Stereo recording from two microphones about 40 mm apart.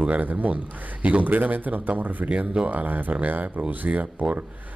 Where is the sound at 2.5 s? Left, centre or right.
Right.